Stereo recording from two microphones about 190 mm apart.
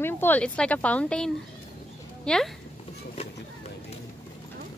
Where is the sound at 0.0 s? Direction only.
10° left (ahead or behind).